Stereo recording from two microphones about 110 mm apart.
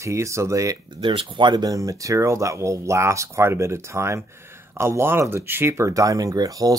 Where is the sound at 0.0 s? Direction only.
25° right (ahead or behind).